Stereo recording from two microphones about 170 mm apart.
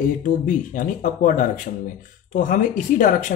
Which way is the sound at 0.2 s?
50° left (ahead or behind).